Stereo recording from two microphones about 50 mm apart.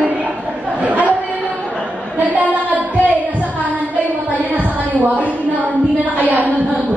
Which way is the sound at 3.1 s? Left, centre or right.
Right.